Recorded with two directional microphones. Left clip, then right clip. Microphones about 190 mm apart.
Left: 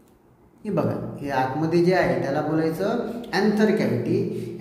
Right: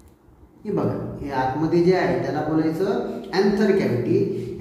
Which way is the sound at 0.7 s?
45° left (ahead or behind).